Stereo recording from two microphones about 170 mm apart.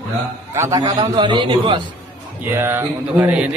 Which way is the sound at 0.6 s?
20° right (ahead or behind).